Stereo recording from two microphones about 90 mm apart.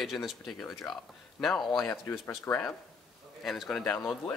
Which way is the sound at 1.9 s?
30° left (ahead or behind).